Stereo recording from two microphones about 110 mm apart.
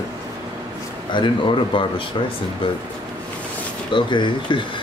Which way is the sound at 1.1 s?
45° left (ahead or behind).